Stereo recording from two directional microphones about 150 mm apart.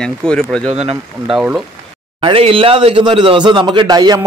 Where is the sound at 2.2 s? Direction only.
35° right (ahead or behind).